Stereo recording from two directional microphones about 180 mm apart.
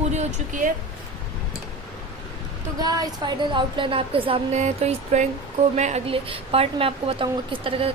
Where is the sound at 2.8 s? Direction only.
20° right (ahead or behind).